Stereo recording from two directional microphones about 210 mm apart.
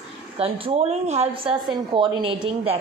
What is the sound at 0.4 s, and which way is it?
A woman's voice, 30° right (ahead or behind).